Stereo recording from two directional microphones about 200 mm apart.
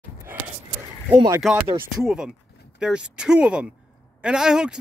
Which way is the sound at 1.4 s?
Centre (ahead or behind).